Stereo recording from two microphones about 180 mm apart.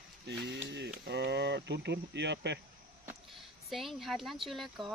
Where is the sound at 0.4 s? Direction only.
75° right (ahead or behind).